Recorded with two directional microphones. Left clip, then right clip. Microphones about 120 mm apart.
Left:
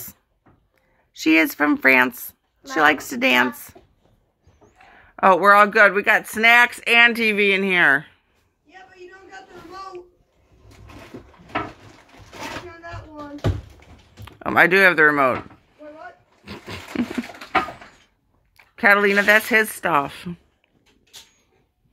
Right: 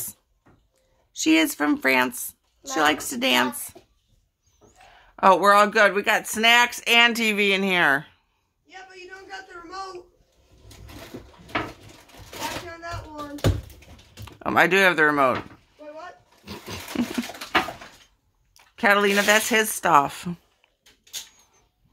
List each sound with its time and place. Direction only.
1.1 s speech: 10° left (ahead or behind)
5.1 s speech: centre (ahead or behind)
6.8 s speech: 15° right (ahead or behind)
7.1 s speech: 30° right (ahead or behind)
14.4 s speech: 5° right (ahead or behind)
16.4 s a sound: 15° right (ahead or behind)
18.8 s speech: 5° right (ahead or behind)
19.8 s speech: 30° right (ahead or behind)
20.1 s speech: 50° right (ahead or behind)